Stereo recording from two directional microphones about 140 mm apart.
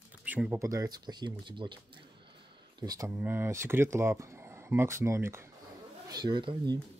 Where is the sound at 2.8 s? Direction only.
25° right (ahead or behind).